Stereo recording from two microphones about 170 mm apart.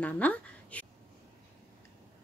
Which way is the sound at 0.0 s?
10° left (ahead or behind).